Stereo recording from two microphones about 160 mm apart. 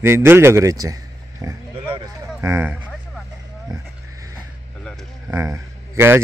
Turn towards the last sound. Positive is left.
turn(degrees=-15)  # may be behind; listen again after turning